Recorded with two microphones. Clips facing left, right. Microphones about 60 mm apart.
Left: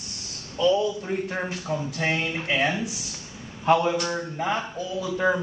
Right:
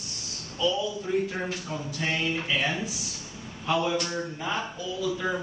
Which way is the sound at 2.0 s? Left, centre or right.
Left.